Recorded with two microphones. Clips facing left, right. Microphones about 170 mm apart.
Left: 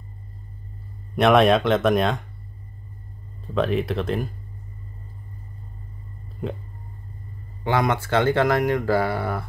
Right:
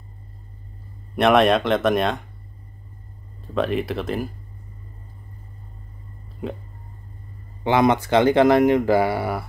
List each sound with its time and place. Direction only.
1.1 s speech: centre (ahead or behind)
3.4 s speech: centre (ahead or behind)
6.4 s speech: centre (ahead or behind)
7.6 s speech: 20° right (ahead or behind)